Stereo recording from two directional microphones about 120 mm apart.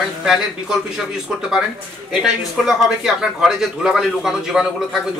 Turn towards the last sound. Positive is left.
turn(degrees=-5)  # may be behind; listen again after turning